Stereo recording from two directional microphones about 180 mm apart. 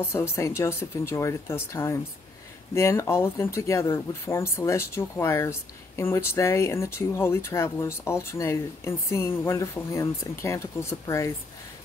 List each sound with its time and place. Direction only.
0.1 s speech: 15° left (ahead or behind)